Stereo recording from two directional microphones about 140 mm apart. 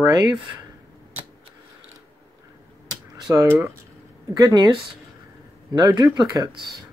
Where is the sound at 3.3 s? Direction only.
20° right (ahead or behind).